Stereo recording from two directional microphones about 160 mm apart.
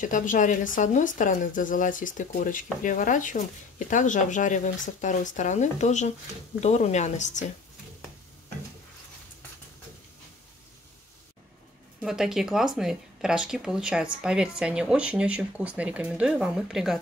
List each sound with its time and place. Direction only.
0.0 s speech: 55° left (ahead or behind)
12.0 s speech: 5° right (ahead or behind)